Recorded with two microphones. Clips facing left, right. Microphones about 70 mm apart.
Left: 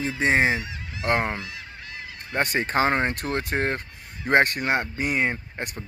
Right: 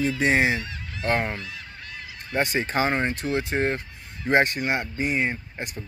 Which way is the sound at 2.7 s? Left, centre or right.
Left.